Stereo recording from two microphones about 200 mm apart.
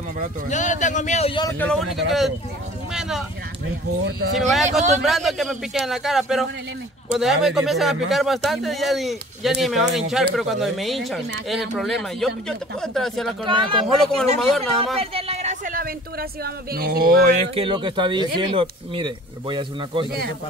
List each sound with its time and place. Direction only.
0.5 s speech: 35° left (ahead or behind)
1.6 s speech: 5° left (ahead or behind)
2.9 s a sound: centre (ahead or behind)
4.4 s speech: centre (ahead or behind)
13.4 s a man's voice: 25° right (ahead or behind)
13.9 s speech: 5° left (ahead or behind)
15.0 s a man's voice: 30° right (ahead or behind)
20.1 s speech: 50° right (ahead or behind)